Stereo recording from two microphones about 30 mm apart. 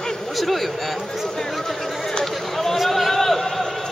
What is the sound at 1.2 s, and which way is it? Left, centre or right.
Speech, centre.